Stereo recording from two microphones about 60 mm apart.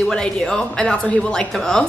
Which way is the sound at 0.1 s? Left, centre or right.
Centre.